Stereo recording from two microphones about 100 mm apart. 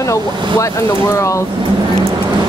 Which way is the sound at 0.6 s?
30° left (ahead or behind).